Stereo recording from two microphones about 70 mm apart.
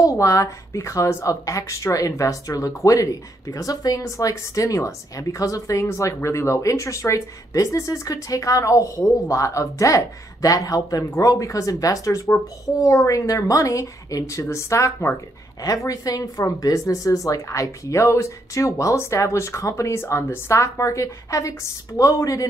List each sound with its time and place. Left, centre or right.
0.0 s speech: left